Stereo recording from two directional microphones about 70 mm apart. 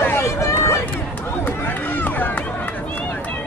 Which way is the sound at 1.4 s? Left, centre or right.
Left.